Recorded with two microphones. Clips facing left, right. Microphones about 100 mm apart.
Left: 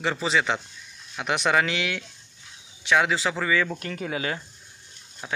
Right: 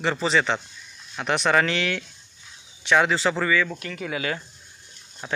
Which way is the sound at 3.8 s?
35° left (ahead or behind).